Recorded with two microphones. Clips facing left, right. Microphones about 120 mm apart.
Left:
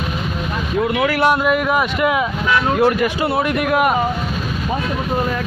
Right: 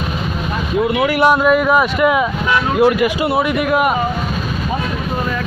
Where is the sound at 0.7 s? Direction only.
10° right (ahead or behind).